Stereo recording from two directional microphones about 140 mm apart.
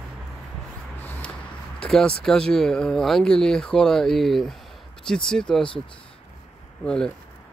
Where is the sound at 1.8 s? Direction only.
5° left (ahead or behind).